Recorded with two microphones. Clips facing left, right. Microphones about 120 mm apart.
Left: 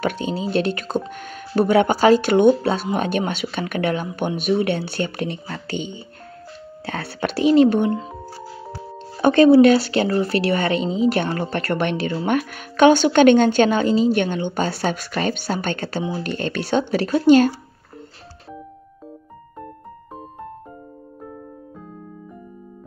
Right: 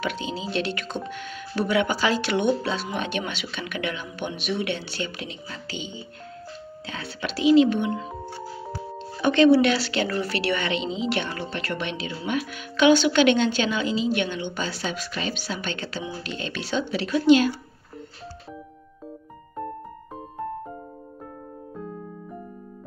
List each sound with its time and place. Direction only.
0.0 s speech: 50° left (ahead or behind)
9.1 s speech: 45° left (ahead or behind)